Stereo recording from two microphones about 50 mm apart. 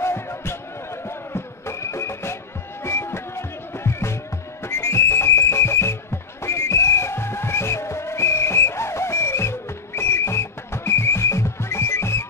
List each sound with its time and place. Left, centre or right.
0.0 s music: left
2.8 s music: left
4.6 s whistle: left
6.4 s music: left